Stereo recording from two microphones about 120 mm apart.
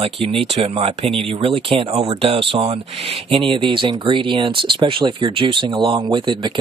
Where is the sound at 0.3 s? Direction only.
55° right (ahead or behind).